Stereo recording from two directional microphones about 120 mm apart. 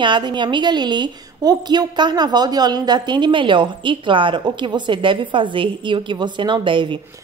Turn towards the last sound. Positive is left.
turn(degrees=-45)  # may be behind; listen again after turning